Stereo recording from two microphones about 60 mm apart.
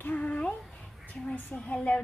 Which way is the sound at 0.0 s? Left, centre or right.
Left.